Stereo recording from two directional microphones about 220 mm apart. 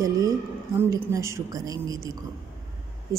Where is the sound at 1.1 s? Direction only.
15° right (ahead or behind).